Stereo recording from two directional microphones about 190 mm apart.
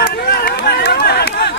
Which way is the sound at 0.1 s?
55° left (ahead or behind).